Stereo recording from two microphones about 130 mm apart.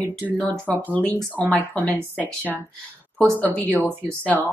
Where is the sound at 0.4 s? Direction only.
10° left (ahead or behind).